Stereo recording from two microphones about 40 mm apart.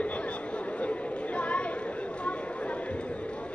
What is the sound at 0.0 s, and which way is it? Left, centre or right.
Chatter, left.